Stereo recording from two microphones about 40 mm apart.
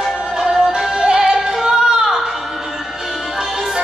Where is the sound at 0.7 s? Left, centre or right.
Centre.